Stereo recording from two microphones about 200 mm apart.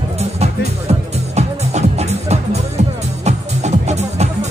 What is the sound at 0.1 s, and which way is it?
Music, 30° right (ahead or behind).